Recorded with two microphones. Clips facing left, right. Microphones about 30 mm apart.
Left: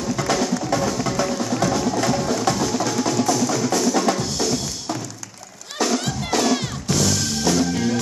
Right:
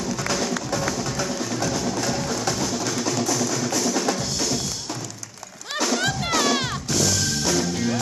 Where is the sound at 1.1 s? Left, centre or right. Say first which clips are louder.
Left 4 dB; left.